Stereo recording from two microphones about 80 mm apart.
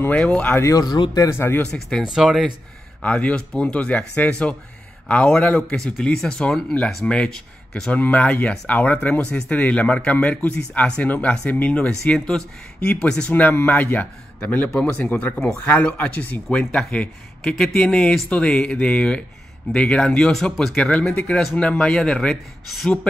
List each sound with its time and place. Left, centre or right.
0.0 s speech: centre
0.7 s speech: left
1.1 s speech: left
1.4 s speech: left
1.7 s speech: centre
2.0 s speech: centre
3.0 s speech: centre